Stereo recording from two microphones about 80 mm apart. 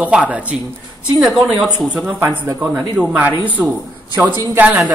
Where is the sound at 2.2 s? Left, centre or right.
Right.